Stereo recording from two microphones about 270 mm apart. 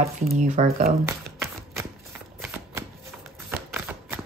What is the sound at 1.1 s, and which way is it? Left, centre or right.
Typewriter, centre.